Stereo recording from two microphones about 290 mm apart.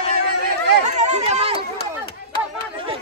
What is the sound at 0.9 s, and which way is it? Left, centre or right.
Chatter, right.